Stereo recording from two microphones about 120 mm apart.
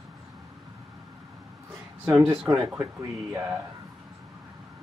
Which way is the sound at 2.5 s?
30° right (ahead or behind).